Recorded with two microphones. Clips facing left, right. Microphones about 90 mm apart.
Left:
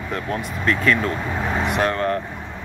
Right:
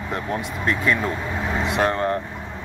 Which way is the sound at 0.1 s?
20° right (ahead or behind).